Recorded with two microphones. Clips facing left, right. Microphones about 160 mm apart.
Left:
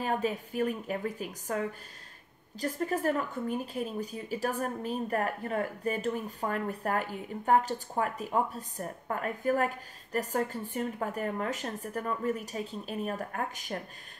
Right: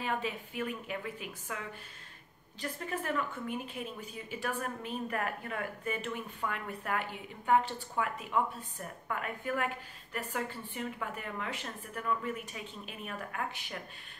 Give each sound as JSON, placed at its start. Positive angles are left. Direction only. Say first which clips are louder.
{"t": 0.0, "sound": "speech", "louder": "left 5 dB", "side_deg": 40}